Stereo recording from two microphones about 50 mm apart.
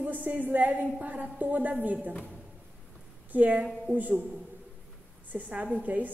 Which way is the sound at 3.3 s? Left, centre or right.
Right.